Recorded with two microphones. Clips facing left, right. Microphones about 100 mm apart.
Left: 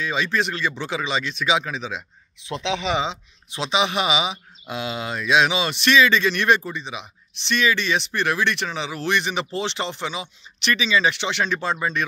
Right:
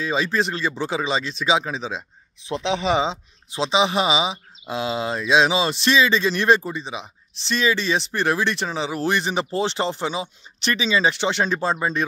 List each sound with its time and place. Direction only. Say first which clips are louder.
0.0 s speech: right 1 dB; 30° right (ahead or behind)